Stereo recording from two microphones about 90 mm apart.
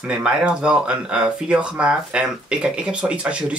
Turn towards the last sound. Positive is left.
turn(degrees=-15)  # may be behind; listen again after turning